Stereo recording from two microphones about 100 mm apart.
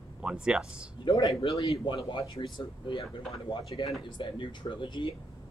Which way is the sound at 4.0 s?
55° left (ahead or behind).